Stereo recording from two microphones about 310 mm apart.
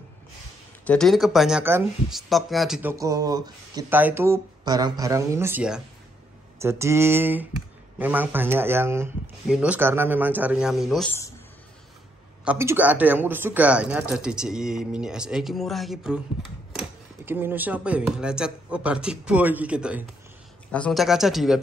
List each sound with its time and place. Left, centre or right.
0.8 s speech: centre
12.4 s speech: centre